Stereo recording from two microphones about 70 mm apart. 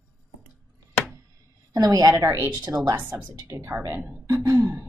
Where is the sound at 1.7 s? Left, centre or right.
Right.